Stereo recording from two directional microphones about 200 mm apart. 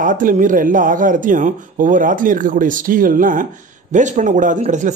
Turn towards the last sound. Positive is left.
turn(degrees=-35)  # may be behind; listen again after turning